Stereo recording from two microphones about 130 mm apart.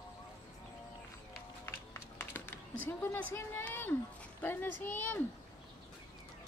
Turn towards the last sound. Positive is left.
turn(degrees=10)  # may be behind; listen again after turning